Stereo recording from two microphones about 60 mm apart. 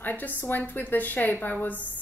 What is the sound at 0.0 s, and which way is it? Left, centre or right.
A woman's voice, left.